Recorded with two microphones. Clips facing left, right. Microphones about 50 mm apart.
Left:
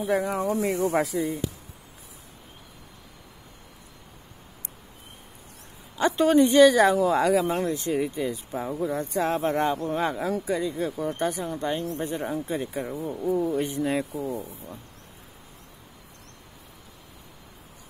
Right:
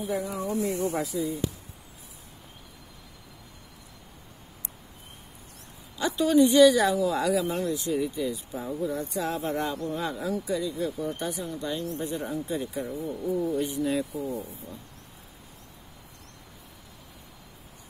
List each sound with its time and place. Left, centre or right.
0.0 s speech: left
0.4 s speech: left
5.9 s speech: left